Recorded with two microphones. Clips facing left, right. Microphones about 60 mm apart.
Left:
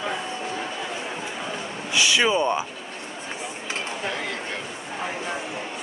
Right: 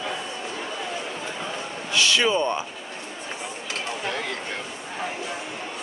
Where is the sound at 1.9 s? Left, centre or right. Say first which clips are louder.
Left 1 dB; centre.